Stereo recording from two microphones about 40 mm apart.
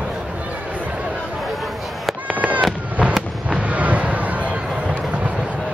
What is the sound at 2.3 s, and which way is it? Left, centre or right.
Fireworks, right.